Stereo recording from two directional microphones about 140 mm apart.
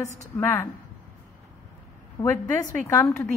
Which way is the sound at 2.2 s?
20° left (ahead or behind).